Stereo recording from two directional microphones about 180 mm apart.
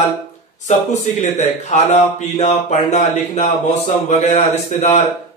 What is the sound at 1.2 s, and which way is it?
Speech, 45° left (ahead or behind).